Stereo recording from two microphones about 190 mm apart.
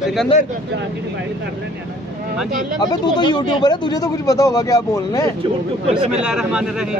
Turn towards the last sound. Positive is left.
turn(degrees=-5)  # may be behind; listen again after turning